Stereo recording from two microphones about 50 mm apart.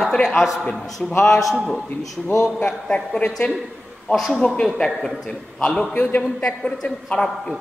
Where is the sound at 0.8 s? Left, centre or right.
Centre.